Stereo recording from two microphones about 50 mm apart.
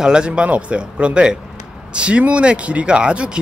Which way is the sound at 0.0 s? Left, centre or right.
Centre.